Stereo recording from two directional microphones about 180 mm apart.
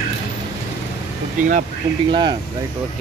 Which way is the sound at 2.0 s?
25° right (ahead or behind).